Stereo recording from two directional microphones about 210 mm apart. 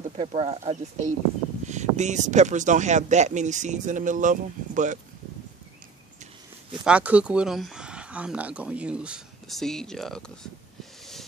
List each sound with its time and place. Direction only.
0.2 s speech: 30° right (ahead or behind)
6.8 s speech: 5° right (ahead or behind)